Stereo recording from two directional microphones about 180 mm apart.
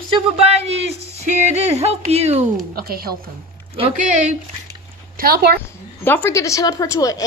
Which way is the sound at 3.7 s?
35° right (ahead or behind).